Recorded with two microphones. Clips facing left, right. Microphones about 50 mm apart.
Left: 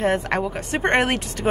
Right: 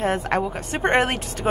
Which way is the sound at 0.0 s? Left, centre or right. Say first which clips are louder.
Left 1 dB; centre.